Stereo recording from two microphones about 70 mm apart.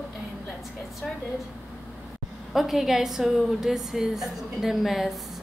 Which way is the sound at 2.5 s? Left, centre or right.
Centre.